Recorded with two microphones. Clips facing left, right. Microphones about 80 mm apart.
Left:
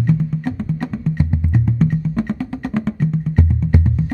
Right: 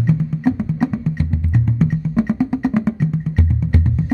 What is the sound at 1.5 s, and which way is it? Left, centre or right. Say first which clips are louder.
Music: right 1 dB; centre.